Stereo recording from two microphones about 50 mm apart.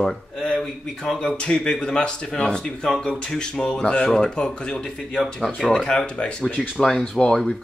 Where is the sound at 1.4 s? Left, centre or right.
Centre.